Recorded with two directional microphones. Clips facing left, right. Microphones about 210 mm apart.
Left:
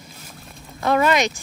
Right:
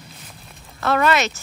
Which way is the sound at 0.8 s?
15° left (ahead or behind).